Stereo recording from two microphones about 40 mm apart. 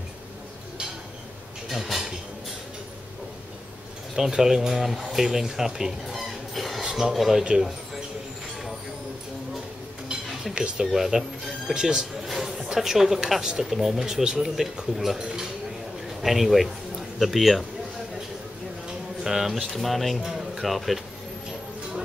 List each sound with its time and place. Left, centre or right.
1.7 s speech: centre
4.1 s speech: centre
6.8 s speech: centre
10.5 s speech: right
10.9 s speech: centre
16.2 s a man's voice: centre
18.9 s speech: centre